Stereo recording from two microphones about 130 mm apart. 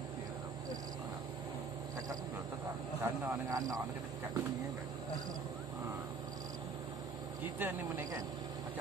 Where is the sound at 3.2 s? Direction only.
25° right (ahead or behind).